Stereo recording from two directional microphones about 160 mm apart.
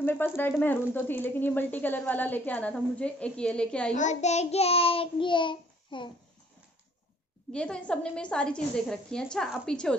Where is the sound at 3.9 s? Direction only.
45° left (ahead or behind); by 6.1 s 30° left (ahead or behind).